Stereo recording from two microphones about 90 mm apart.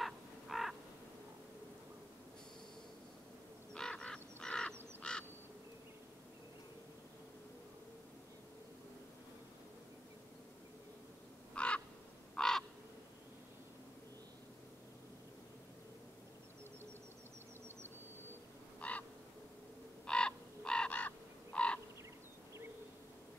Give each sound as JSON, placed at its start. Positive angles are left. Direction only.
{"t": 0.0, "sound": "crow", "side_deg": 0}
{"t": 3.7, "sound": "a sound", "side_deg": 10}
{"t": 5.0, "sound": "duck", "side_deg": 10}
{"t": 11.5, "sound": "crow", "side_deg": 10}
{"t": 18.8, "sound": "a sound", "side_deg": 15}
{"t": 20.1, "sound": "crow", "side_deg": 10}